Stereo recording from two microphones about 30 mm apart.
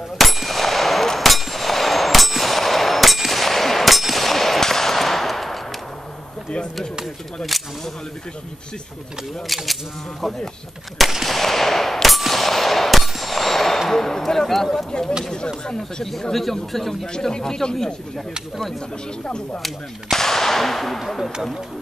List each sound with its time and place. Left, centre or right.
0.2 s clang: centre
4.1 s machine gun: centre
6.5 s chop: left
9.5 s speech: centre
11.2 s a sound: centre
13.0 s clang: centre
13.3 s a sound: centre
14.9 s a sound: left
16.0 s gunshot: centre
17.2 s speech: centre
19.2 s speech: left
19.6 s gunshot: centre